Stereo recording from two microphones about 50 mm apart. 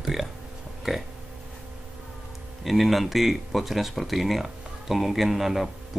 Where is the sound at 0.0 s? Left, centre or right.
Centre.